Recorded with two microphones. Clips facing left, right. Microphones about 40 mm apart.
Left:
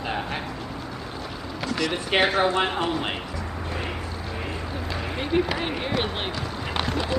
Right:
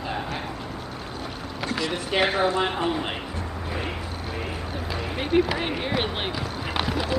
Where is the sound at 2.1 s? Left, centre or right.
Left.